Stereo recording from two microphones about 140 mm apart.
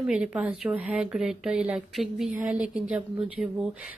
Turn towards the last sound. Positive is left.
turn(degrees=-5)  # may be behind; listen again after turning